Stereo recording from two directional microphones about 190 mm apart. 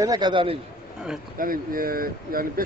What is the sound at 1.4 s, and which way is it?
Speech, 50° right (ahead or behind).